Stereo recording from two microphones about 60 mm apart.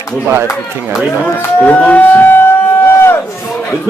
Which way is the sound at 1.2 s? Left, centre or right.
Left.